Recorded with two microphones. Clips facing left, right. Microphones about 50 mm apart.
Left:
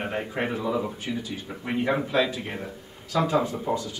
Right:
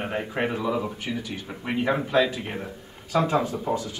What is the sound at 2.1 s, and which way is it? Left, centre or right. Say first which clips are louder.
Speech: right 2 dB; right.